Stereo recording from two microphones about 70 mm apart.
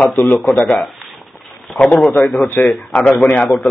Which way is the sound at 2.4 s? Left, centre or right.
Left.